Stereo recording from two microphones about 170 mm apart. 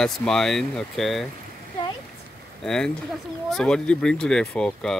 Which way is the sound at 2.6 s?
5° left (ahead or behind).